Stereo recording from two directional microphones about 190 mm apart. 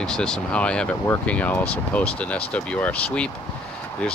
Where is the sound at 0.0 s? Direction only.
5° left (ahead or behind).